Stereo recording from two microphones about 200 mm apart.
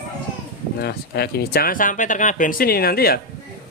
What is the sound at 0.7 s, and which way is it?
A man's voice, 50° left (ahead or behind).